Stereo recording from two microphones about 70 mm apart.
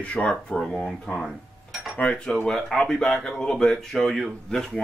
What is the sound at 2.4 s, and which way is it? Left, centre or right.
Speech, centre.